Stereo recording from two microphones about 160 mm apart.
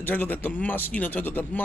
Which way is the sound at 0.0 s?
10° left (ahead or behind).